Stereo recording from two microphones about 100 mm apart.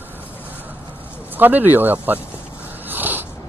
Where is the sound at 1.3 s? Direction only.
20° right (ahead or behind).